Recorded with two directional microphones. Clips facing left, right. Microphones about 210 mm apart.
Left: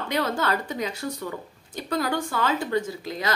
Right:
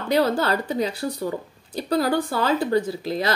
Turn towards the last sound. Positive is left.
turn(degrees=-35)  # may be behind; listen again after turning